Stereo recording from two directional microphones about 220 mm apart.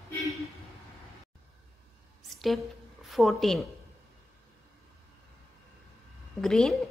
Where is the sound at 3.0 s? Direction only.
Centre (ahead or behind).